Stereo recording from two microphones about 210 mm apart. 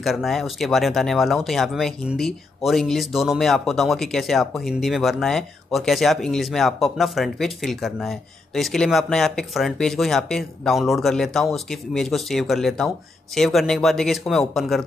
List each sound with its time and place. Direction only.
0.0 s speech: centre (ahead or behind)